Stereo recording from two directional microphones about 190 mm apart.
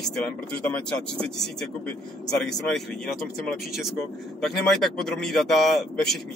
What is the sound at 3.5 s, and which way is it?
Speech, centre (ahead or behind).